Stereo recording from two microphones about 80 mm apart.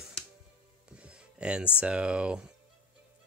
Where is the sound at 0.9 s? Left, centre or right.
Centre.